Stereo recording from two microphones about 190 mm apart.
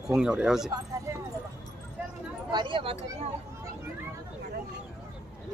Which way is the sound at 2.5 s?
25° right (ahead or behind).